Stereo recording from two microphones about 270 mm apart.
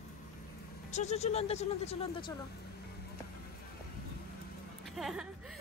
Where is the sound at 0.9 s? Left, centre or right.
Left.